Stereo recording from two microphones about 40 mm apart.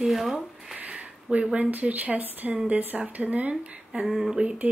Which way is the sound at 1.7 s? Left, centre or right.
Right.